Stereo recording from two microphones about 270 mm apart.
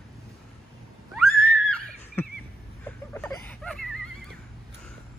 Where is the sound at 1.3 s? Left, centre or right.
Centre.